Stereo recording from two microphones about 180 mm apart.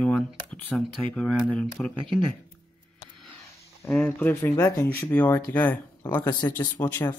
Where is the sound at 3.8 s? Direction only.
5° left (ahead or behind).